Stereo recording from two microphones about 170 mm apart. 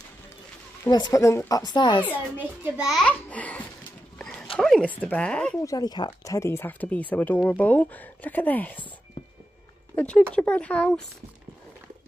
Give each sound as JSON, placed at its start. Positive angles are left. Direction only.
{"t": 0.8, "sound": "a woman's voice", "side_deg": 25}
{"t": 2.3, "sound": "a child's voice", "side_deg": -5}
{"t": 5.6, "sound": "speech", "side_deg": 20}
{"t": 9.9, "sound": "speech", "side_deg": 5}